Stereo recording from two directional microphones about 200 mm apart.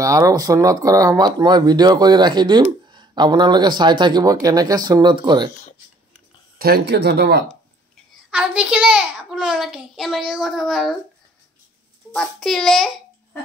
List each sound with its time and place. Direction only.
0.0 s speech: 15° right (ahead or behind)
6.6 s speech: 55° right (ahead or behind)
8.3 s a child's voice: 5° right (ahead or behind)
12.1 s a child's voice: centre (ahead or behind)